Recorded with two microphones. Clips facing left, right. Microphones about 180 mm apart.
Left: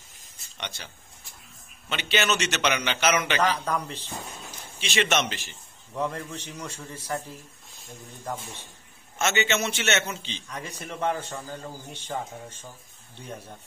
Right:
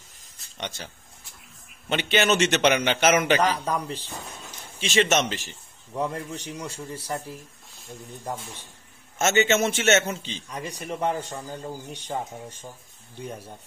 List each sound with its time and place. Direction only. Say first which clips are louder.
0.6 s a man's voice: right 4 dB; 45° right (ahead or behind)
1.9 s a man's voice: right 4 dB; 50° right (ahead or behind)
3.4 s a man's voice: right 1 dB; 10° right (ahead or behind)
4.7 s speech: right 3 dB; 40° right (ahead or behind)
5.9 s a man's voice: right 1 dB; 15° right (ahead or behind)
9.2 s a man's voice: right 5 dB; 45° right (ahead or behind)
11.0 s a man's voice: even; 15° right (ahead or behind)